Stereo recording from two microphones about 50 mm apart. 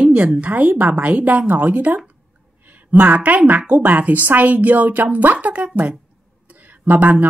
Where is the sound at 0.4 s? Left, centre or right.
Right.